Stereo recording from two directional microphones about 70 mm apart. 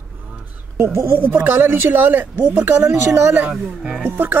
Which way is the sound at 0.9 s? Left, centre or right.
Right.